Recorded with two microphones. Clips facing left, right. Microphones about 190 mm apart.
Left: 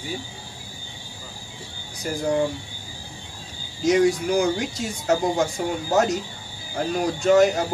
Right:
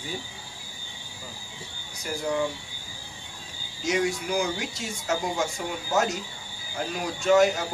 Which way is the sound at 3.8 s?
40° left (ahead or behind).